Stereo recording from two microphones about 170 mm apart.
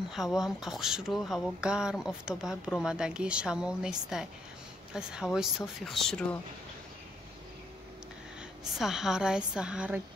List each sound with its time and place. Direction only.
0.1 s speech: centre (ahead or behind)
8.7 s speech: centre (ahead or behind)